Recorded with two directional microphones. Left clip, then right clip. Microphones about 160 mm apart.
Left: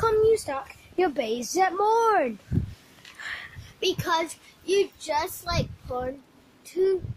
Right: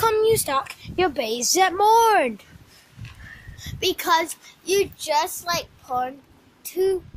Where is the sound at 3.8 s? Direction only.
30° right (ahead or behind).